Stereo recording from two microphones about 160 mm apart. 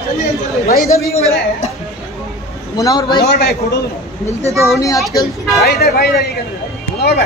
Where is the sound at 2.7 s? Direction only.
25° left (ahead or behind).